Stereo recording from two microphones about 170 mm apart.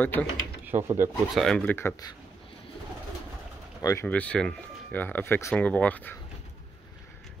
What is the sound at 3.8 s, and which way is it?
Speech, 15° left (ahead or behind).